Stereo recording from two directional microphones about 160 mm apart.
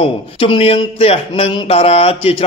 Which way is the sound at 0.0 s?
35° left (ahead or behind).